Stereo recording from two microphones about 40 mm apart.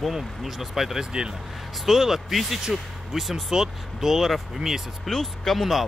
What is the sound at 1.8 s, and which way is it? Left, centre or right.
Speech, centre.